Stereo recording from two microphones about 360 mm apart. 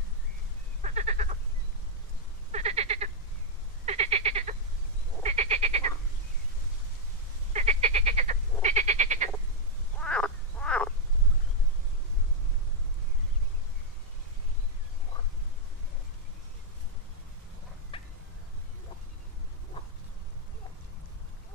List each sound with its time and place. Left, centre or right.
0.8 s sheep: centre
2.5 s frog: centre
7.5 s frog: centre
9.9 s frog: centre
17.9 s a sound: centre